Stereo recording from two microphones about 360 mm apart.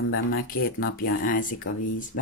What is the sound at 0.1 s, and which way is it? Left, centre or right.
Speech, left.